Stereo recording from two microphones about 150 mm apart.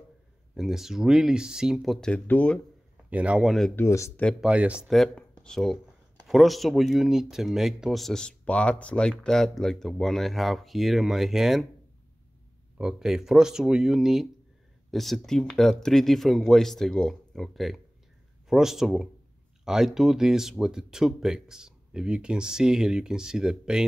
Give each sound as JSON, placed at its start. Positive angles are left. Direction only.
{"t": 0.6, "sound": "speech", "side_deg": 0}
{"t": 3.1, "sound": "a man's voice", "side_deg": -10}
{"t": 3.7, "sound": "speech", "side_deg": 20}
{"t": 4.2, "sound": "speech", "side_deg": 5}
{"t": 4.5, "sound": "speech", "side_deg": -10}
{"t": 12.7, "sound": "speech", "side_deg": -5}